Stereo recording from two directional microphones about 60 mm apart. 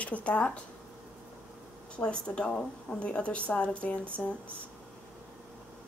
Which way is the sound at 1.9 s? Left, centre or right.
Centre.